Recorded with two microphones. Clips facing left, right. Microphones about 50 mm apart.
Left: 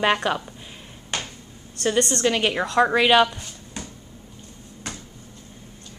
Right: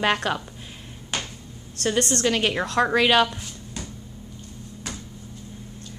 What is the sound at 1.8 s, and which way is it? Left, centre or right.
A woman's voice, centre.